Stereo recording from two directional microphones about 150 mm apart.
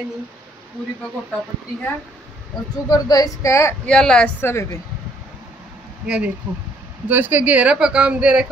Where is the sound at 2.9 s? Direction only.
25° left (ahead or behind).